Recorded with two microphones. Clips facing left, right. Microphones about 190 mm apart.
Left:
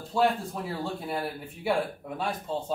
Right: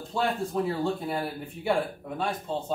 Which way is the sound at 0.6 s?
Centre (ahead or behind).